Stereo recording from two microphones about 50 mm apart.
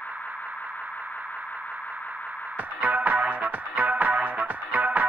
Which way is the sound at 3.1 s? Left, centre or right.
Right.